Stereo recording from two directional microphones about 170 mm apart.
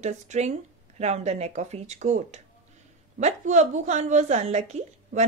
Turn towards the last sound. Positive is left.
turn(degrees=-40)  # may be behind; listen again after turning